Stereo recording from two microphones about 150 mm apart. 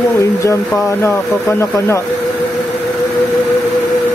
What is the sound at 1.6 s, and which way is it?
Speech, 20° left (ahead or behind).